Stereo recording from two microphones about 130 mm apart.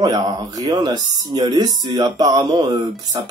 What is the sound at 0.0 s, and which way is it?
Speech, 30° right (ahead or behind).